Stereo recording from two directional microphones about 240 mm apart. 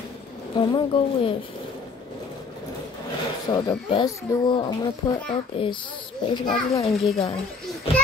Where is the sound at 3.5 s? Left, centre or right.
Centre.